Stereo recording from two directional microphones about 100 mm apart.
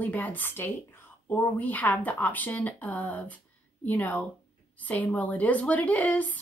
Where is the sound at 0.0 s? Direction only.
15° left (ahead or behind).